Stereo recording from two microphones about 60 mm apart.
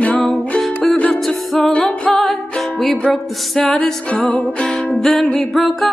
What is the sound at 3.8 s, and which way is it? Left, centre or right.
Music, centre.